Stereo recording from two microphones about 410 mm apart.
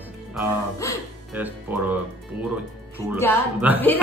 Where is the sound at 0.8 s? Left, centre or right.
Centre.